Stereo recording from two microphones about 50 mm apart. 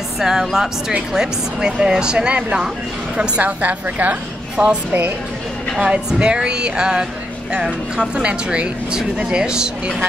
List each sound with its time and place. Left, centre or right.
0.2 s a woman's voice: centre; by 4.7 s right
5.8 s a woman's voice: right